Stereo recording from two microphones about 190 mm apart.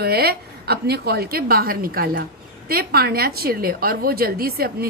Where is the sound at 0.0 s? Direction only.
55° right (ahead or behind).